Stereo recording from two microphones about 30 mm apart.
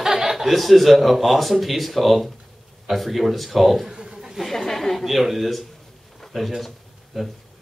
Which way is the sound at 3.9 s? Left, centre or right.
Right.